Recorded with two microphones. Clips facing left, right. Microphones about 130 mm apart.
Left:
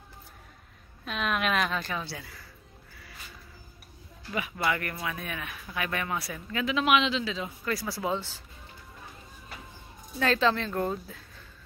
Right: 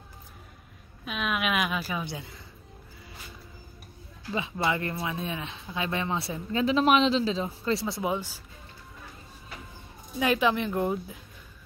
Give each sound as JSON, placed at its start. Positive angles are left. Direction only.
{"t": 1.0, "sound": "a woman's voice", "side_deg": -5}
{"t": 2.0, "sound": "speech", "side_deg": -20}
{"t": 4.3, "sound": "speech", "side_deg": -25}
{"t": 10.1, "sound": "speech", "side_deg": -15}